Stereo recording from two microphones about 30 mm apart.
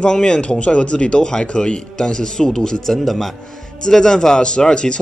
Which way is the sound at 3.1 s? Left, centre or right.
Centre.